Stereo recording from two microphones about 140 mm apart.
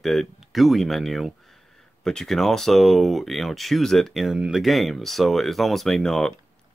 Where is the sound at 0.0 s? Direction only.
Centre (ahead or behind).